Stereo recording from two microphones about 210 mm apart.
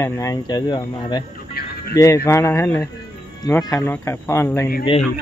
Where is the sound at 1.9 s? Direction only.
15° left (ahead or behind).